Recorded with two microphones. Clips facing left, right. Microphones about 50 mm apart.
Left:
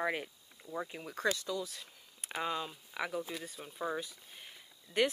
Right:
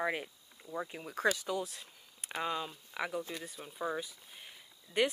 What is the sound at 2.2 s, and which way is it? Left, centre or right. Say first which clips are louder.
Speech: even; centre.